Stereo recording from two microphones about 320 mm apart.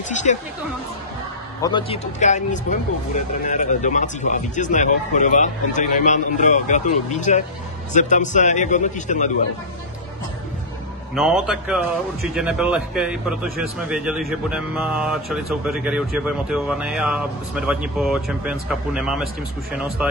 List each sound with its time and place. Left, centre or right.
0.1 s speech: left
1.6 s speech: centre
11.1 s speech: centre